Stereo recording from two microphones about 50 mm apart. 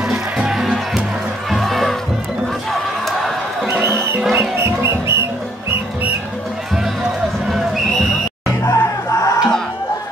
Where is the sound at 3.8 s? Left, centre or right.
Right.